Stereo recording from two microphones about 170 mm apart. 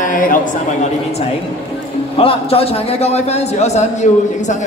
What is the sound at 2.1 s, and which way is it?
A man's voice, 35° left (ahead or behind).